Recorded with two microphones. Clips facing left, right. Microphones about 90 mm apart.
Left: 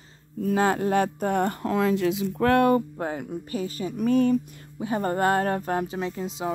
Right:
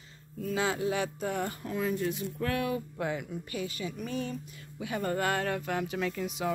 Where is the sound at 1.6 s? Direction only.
90° left.